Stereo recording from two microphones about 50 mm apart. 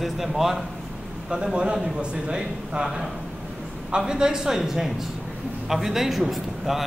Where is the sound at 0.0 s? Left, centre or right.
Centre.